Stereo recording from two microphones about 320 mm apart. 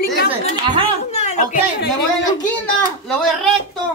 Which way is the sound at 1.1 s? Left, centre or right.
Left.